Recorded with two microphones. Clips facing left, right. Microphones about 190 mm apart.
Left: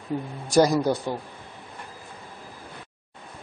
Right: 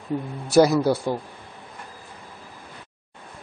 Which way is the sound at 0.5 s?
10° right (ahead or behind).